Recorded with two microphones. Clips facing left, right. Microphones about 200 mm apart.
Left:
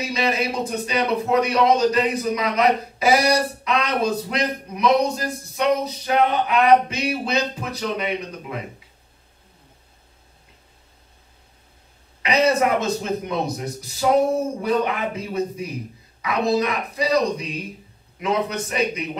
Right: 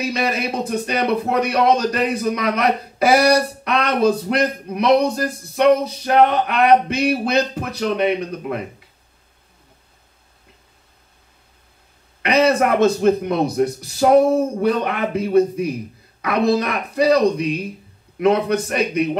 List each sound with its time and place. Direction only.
0.1 s a man's voice: 60° right (ahead or behind)
12.2 s a man's voice: 60° right (ahead or behind)